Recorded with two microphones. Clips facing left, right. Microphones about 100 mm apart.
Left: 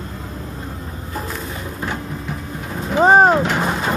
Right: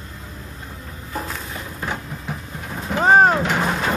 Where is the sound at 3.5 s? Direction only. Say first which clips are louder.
Left 1 dB; 10° left (ahead or behind).